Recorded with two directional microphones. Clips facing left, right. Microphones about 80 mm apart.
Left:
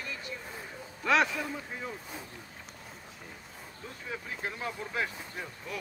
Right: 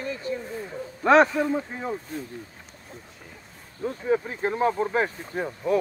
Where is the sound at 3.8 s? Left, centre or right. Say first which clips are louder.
Right 17 dB; right.